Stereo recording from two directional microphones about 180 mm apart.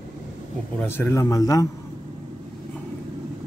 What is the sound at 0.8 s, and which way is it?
Speech, 15° left (ahead or behind).